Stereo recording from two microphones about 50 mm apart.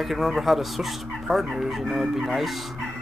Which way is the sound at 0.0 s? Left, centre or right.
Centre.